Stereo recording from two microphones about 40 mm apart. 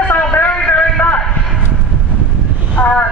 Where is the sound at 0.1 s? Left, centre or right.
Left.